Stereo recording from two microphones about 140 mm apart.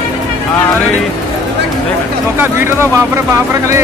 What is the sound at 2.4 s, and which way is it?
Speech, 15° right (ahead or behind).